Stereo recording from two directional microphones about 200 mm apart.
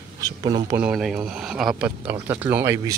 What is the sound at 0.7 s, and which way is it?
Speech, 5° right (ahead or behind).